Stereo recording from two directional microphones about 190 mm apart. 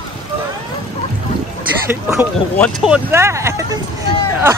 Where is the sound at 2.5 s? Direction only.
5° left (ahead or behind).